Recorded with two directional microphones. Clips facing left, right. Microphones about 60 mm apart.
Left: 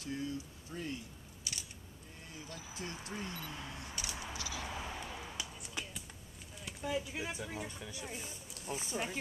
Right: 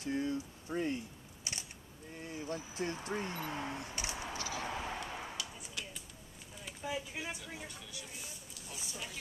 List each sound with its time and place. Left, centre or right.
0.0 s a sound: right
4.6 s vehicle: right
5.1 s a sound: right
5.8 s basketball bounce: left
6.6 s speech: centre
7.6 s speech: left